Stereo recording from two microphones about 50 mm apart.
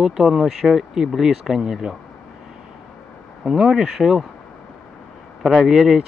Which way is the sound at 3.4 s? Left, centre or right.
Centre.